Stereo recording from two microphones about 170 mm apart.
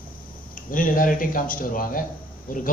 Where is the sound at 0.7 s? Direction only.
55° left (ahead or behind).